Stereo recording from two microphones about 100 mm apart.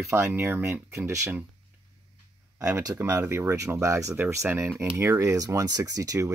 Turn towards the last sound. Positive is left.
turn(degrees=-35)  # may be behind; listen again after turning